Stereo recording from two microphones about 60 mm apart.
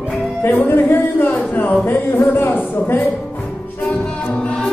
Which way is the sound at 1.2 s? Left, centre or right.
Left.